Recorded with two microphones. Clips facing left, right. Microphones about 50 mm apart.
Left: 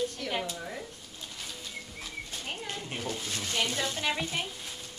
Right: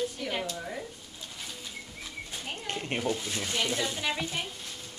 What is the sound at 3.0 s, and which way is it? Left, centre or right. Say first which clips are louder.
Speech: right 3 dB; centre.